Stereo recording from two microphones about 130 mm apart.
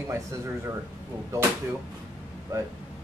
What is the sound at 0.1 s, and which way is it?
Speech, 20° right (ahead or behind).